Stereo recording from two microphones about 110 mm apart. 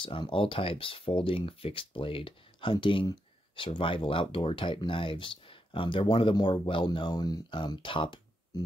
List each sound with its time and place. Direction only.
0.0 s speech: 50° left (ahead or behind)